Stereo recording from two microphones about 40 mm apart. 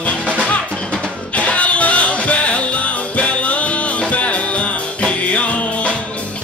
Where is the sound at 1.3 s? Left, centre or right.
Left.